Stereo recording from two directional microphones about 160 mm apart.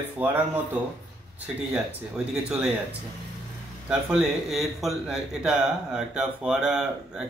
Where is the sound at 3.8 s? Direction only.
5° right (ahead or behind).